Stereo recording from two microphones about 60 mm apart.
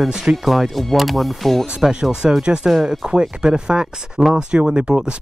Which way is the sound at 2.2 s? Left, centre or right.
Centre.